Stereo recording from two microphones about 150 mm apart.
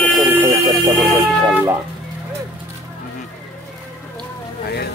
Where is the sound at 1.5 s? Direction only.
10° right (ahead or behind).